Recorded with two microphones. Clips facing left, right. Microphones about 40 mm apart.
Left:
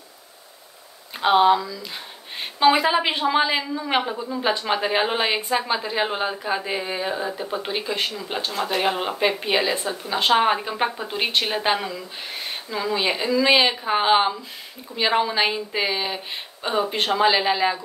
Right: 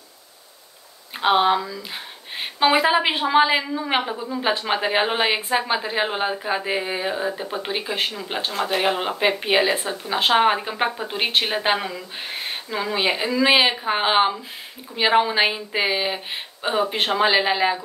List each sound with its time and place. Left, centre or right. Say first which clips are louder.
1.2 s a woman's voice: left 1 dB; centre